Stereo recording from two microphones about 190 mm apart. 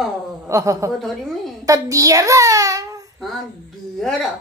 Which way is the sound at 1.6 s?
15° right (ahead or behind).